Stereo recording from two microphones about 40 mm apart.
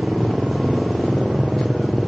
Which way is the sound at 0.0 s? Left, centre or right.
Centre.